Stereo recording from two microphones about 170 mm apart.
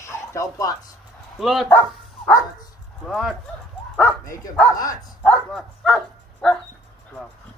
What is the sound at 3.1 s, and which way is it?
Speech, centre (ahead or behind).